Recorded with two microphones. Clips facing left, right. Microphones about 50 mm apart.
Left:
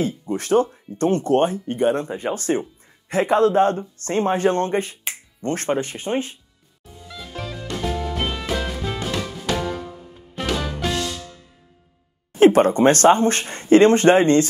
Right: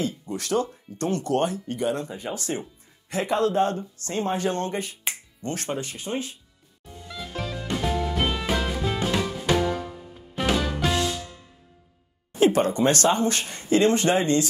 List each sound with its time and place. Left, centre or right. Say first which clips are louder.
0.0 s speech: left 5 dB; left
7.1 s music: even; centre
12.4 s speech: left 7 dB; left